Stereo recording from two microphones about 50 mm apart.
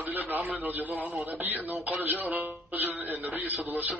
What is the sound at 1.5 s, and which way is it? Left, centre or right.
Music, right.